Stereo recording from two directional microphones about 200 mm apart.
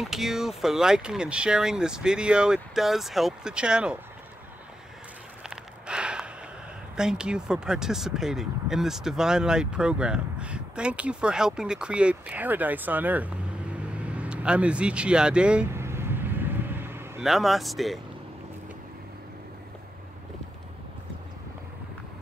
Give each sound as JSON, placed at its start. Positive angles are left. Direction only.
{"t": 0.0, "sound": "speech", "side_deg": 0}
{"t": 5.4, "sound": "a sound", "side_deg": -5}
{"t": 7.0, "sound": "speech", "side_deg": -5}
{"t": 13.9, "sound": "vehicle", "side_deg": -5}
{"t": 17.2, "sound": "speech", "side_deg": 0}